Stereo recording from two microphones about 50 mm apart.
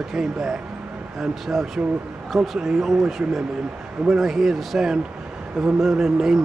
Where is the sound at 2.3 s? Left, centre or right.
Centre.